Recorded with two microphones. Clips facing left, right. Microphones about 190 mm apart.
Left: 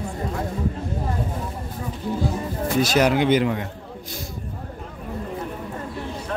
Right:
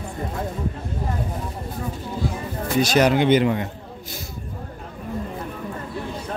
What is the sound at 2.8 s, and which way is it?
Speech, 5° left (ahead or behind).